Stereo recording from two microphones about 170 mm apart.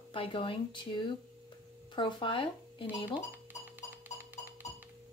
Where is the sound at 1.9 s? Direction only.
30° left (ahead or behind).